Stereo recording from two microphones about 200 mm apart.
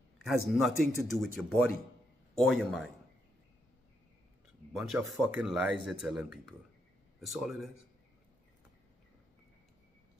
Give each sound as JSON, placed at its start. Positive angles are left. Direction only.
{"t": 0.2, "sound": "speech", "side_deg": 0}
{"t": 4.7, "sound": "speech", "side_deg": 0}